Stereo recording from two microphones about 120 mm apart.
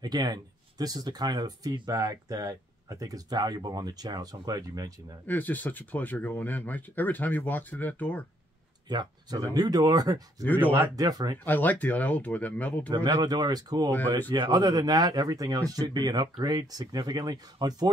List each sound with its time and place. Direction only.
0.0 s speech: 35° right (ahead or behind)
5.2 s speech: 15° left (ahead or behind)
8.8 s speech: 35° right (ahead or behind)
10.6 s speech: 15° right (ahead or behind)
11.0 s speech: 35° right (ahead or behind)
11.4 s speech: 15° left (ahead or behind)
12.9 s speech: 40° right (ahead or behind)